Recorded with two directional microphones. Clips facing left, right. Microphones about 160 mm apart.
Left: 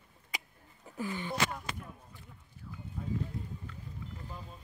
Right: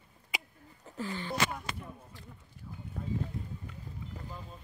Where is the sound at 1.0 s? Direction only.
15° left (ahead or behind).